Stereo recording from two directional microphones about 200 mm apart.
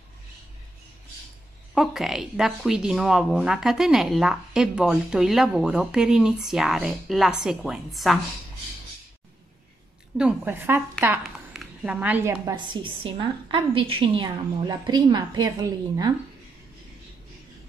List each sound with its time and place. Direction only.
1.8 s speech: centre (ahead or behind)
10.1 s a woman's voice: 5° right (ahead or behind)